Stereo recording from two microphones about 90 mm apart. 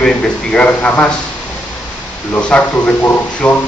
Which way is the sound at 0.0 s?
10° left (ahead or behind).